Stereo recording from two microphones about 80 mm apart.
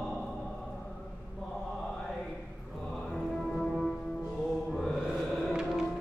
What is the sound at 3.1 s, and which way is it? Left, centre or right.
Music, centre.